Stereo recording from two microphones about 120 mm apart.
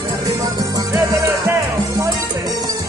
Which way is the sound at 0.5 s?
30° right (ahead or behind).